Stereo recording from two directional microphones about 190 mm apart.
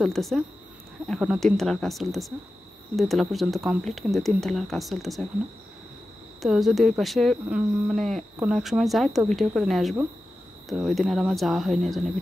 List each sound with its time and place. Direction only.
0.0 s speech: centre (ahead or behind)
6.4 s speech: centre (ahead or behind)